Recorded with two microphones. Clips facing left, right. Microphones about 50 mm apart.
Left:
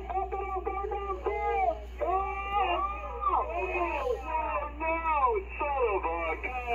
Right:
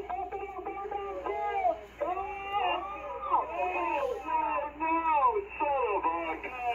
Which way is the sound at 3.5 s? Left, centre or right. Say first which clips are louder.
Right 1 dB; centre.